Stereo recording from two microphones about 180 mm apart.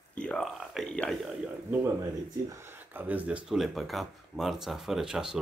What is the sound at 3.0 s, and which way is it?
Speech, 10° right (ahead or behind).